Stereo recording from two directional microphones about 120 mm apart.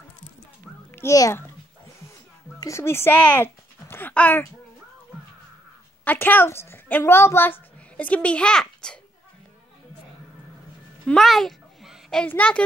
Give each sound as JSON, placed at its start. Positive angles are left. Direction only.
{"t": 0.9, "sound": "a child's voice", "side_deg": 25}
{"t": 2.6, "sound": "speech", "side_deg": 25}
{"t": 6.0, "sound": "a woman's voice", "side_deg": 15}
{"t": 11.1, "sound": "a sound", "side_deg": 0}
{"t": 12.3, "sound": "a woman's voice", "side_deg": 10}